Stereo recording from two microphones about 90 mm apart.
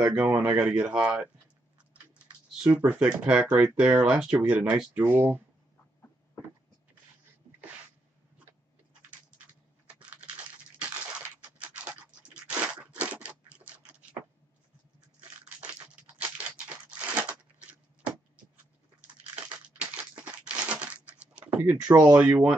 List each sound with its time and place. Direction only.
0.3 s speech: 15° right (ahead or behind)
2.8 s speech: 15° right (ahead or behind)
9.8 s a sound: 15° right (ahead or behind)
15.1 s crunch: 15° right (ahead or behind)
16.2 s crumpling: 15° right (ahead or behind)
19.6 s crumpling: 15° right (ahead or behind)
21.8 s speech: 40° right (ahead or behind)
22.1 s speech: 15° right (ahead or behind)